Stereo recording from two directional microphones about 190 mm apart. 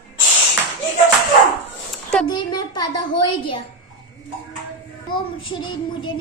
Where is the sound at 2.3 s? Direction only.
20° left (ahead or behind).